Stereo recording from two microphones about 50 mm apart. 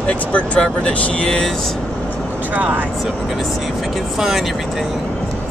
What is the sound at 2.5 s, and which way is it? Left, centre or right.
Speech, right.